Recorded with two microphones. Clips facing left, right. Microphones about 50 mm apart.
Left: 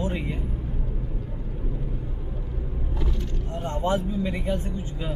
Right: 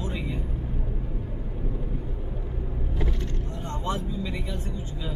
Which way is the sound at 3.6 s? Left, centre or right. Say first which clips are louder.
Left 6 dB; left.